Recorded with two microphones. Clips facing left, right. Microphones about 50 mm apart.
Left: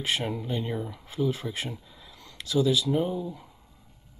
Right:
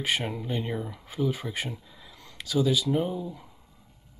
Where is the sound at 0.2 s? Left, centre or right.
Centre.